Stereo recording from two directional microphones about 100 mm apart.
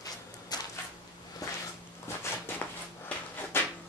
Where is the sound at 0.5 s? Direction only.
40° left (ahead or behind).